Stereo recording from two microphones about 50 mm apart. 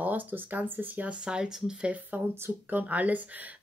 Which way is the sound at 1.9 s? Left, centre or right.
Right.